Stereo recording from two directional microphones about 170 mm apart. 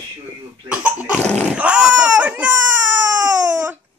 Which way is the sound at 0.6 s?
10° right (ahead or behind).